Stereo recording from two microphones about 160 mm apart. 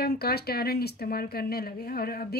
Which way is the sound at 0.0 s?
80° left.